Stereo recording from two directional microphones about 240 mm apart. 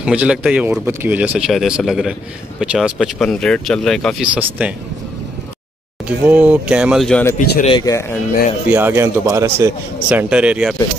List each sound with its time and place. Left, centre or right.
0.0 s speech: centre
6.0 s speech: centre
7.3 s speech: left
7.6 s speech: centre
8.6 s speech: centre